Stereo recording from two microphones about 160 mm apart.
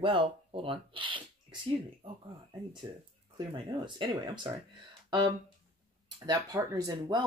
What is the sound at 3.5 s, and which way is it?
Speech, 30° right (ahead or behind).